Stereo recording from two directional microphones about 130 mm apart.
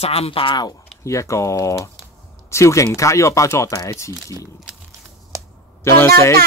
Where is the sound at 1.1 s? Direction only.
25° left (ahead or behind).